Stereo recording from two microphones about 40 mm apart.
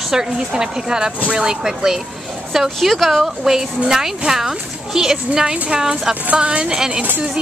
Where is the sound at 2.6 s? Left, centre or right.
Centre.